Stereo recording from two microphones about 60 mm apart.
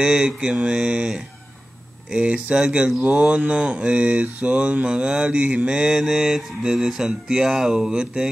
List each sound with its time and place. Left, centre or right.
0.0 s mantra: centre